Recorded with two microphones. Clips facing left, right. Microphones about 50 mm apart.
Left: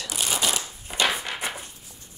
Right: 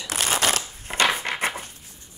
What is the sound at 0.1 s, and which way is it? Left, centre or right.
Shuffling cards, right.